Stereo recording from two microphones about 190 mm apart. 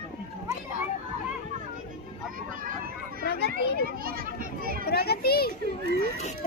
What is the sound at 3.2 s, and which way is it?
Speech, 60° left (ahead or behind).